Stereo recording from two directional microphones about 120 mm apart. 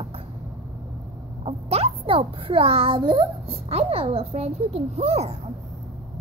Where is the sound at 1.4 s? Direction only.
55° right (ahead or behind).